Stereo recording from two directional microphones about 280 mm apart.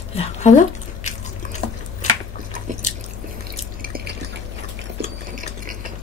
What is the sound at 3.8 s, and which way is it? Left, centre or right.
Drip, right.